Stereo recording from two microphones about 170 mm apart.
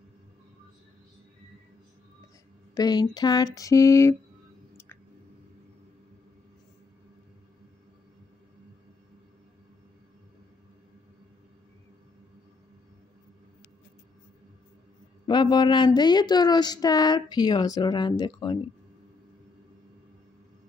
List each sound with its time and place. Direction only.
2.7 s speech: 25° left (ahead or behind)
15.2 s speech: 25° left (ahead or behind)